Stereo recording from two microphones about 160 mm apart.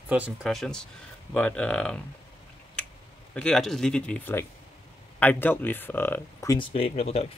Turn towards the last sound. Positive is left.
turn(degrees=40)  # may be behind; listen again after turning